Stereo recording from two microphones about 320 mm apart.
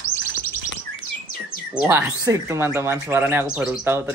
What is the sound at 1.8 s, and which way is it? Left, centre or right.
Speech, centre.